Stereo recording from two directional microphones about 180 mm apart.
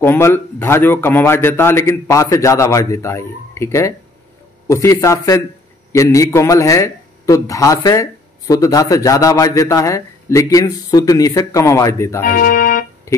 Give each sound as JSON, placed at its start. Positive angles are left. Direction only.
{"t": 0.0, "sound": "a man's voice", "side_deg": 15}
{"t": 12.2, "sound": "speech", "side_deg": 50}